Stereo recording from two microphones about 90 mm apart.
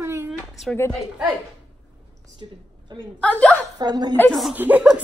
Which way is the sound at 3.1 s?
15° left (ahead or behind).